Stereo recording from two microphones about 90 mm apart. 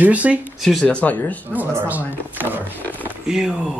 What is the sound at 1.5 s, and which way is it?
Speech, 25° right (ahead or behind).